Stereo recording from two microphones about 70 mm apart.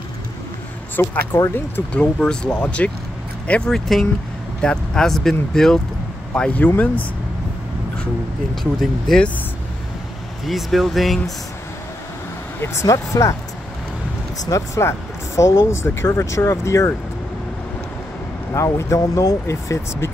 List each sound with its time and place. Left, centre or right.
0.9 s speech: left
1.9 s speech: centre
3.7 s speech: centre
6.3 s speech: centre
9.1 s speech: centre
10.4 s speech: centre
12.5 s speech: left
12.8 s speech: left
14.8 s speech: left
18.5 s speech: left